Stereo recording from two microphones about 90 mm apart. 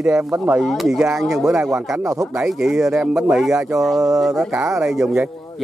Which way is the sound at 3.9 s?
40° right (ahead or behind).